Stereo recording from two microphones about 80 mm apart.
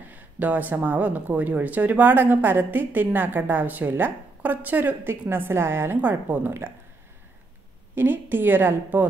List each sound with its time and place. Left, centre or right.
0.0 s speech: right
7.9 s speech: right